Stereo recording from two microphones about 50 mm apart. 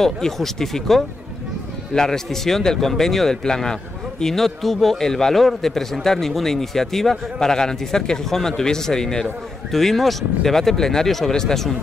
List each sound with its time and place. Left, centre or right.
0.0 s a man's voice: centre